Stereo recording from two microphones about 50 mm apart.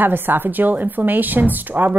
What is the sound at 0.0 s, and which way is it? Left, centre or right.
A woman's voice, right.